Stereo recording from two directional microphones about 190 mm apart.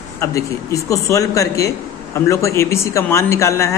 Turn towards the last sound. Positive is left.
turn(degrees=15)  # may be behind; listen again after turning